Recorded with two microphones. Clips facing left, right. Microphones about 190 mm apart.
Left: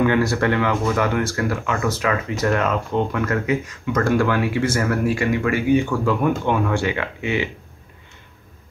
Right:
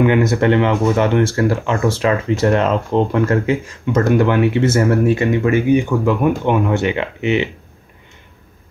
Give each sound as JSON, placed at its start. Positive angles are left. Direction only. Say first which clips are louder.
{"t": 0.0, "sound": "speech", "louder": "right 4 dB", "side_deg": -20}